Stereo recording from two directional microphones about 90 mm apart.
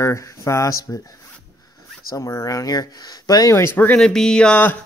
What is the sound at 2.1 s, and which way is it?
Speech, 40° left (ahead or behind).